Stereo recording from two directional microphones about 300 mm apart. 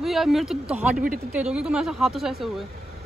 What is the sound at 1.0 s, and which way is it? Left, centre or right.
Speech, right.